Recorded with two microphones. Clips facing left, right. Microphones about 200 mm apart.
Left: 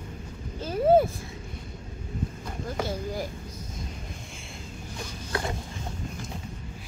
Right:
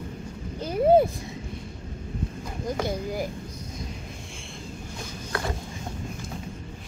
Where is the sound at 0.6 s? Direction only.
15° right (ahead or behind).